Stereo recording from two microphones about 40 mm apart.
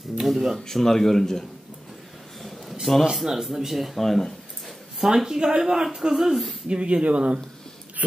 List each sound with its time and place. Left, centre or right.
0.2 s speech: centre
0.7 s speech: centre
2.7 s a sound: centre
3.2 s speech: centre
5.0 s speech: centre
6.7 s speech: right